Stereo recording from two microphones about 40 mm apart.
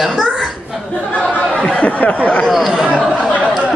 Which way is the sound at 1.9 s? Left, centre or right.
Left.